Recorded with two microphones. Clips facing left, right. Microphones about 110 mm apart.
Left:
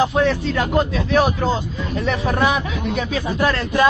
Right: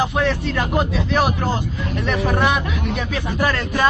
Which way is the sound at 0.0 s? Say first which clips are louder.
Left 2 dB; centre (ahead or behind).